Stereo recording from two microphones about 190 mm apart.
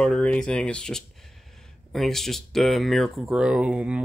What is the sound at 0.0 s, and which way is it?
Speech, 5° left (ahead or behind).